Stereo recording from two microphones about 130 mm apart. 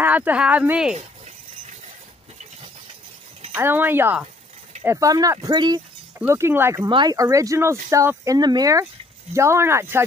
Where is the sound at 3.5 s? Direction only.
15° right (ahead or behind); by 5.8 s 30° right (ahead or behind).